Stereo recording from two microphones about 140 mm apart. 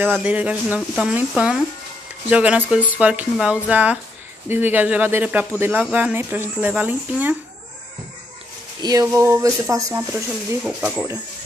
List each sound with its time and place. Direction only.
0.0 s speech: 10° right (ahead or behind)
8.8 s speech: 20° right (ahead or behind)